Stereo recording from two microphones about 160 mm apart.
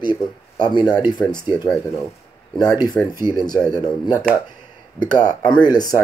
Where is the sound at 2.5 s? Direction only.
25° left (ahead or behind).